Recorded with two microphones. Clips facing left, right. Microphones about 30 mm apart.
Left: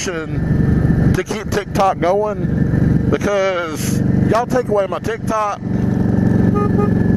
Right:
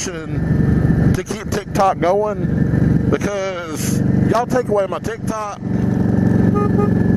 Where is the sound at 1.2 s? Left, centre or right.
Centre.